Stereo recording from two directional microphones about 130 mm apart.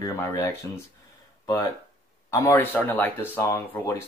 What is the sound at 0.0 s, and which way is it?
Speech, 25° left (ahead or behind).